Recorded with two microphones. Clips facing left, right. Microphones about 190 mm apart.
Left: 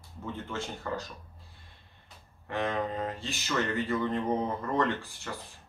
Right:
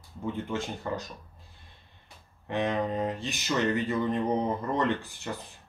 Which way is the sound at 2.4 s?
20° right (ahead or behind).